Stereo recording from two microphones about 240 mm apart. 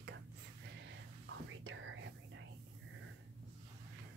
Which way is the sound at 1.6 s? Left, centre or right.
Right.